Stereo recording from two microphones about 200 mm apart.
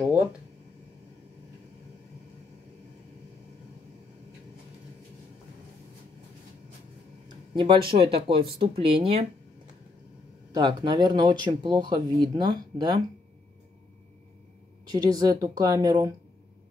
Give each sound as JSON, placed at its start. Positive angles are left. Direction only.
{"t": 0.0, "sound": "a sound", "side_deg": -10}
{"t": 7.2, "sound": "speech", "side_deg": -25}
{"t": 10.5, "sound": "speech", "side_deg": -20}
{"t": 14.9, "sound": "speech", "side_deg": -20}